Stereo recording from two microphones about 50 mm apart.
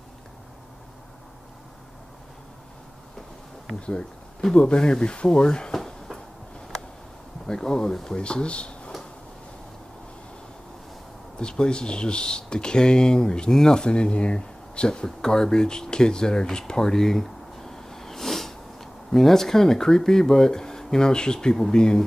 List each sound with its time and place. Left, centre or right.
4.6 s speech: centre
5.8 s a sound: centre
7.4 s speech: centre
11.3 s speech: centre